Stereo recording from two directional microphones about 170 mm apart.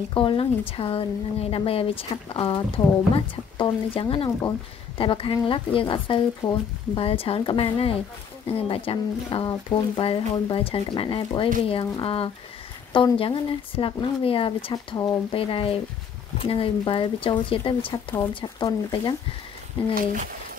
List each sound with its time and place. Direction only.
0.1 s speech: 30° left (ahead or behind)
19.9 s speech: 50° right (ahead or behind)